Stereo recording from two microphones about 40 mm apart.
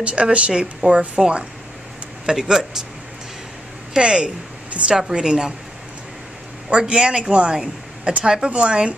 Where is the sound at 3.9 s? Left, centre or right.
Right.